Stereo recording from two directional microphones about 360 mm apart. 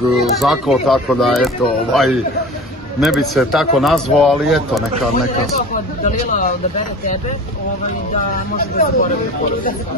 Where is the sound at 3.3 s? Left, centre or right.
Centre.